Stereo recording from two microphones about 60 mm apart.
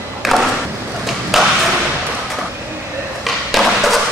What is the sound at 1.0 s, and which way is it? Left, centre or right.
Ping, centre.